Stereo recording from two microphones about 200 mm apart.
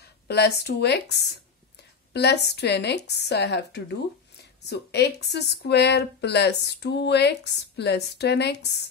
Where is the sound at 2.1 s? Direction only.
55° left (ahead or behind).